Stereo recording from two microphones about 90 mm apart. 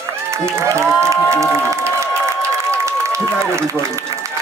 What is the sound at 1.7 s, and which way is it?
Applause, 30° right (ahead or behind).